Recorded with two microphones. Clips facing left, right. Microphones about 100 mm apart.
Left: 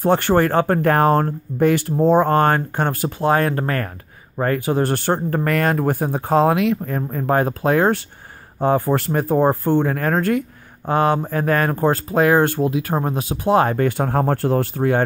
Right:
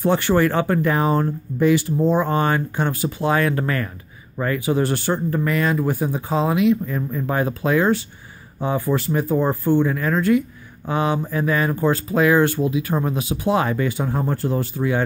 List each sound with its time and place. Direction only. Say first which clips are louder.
0.0 s speech: left 2 dB; 50° left (ahead or behind)